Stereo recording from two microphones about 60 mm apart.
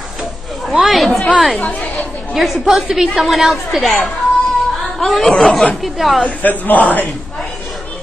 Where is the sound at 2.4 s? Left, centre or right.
Centre.